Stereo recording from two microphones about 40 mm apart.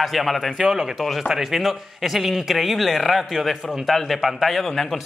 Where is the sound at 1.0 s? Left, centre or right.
Centre.